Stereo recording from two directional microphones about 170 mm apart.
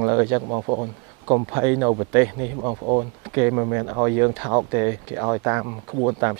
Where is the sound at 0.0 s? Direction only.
20° right (ahead or behind).